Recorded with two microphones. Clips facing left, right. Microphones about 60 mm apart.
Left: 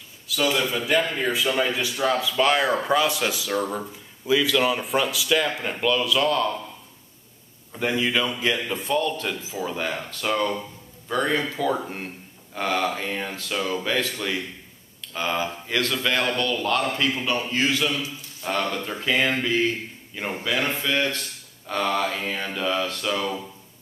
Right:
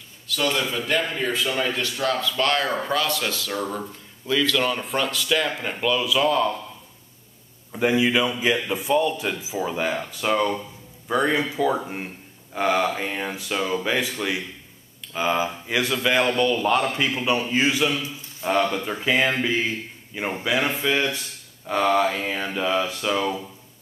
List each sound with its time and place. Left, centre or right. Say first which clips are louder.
0.3 s a man's voice: left 1 dB; centre
7.7 s a man's voice: right 4 dB; centre